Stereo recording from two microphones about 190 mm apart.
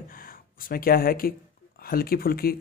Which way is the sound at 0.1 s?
50° left (ahead or behind).